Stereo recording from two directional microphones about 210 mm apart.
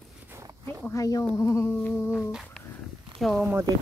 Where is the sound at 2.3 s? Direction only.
5° left (ahead or behind).